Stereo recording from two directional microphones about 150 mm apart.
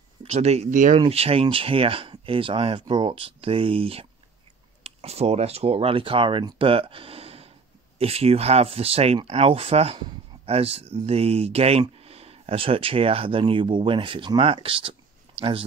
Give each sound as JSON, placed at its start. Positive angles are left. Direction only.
{"t": 0.2, "sound": "speech", "side_deg": -45}
{"t": 0.9, "sound": "speech", "side_deg": -40}